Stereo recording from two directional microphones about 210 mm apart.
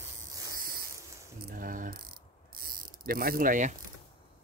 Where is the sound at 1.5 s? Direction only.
40° right (ahead or behind).